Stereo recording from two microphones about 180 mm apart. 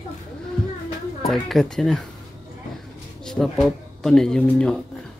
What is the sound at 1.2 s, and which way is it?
Speech, centre (ahead or behind).